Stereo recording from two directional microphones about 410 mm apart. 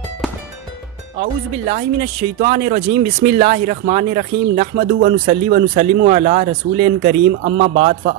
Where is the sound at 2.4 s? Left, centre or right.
Centre.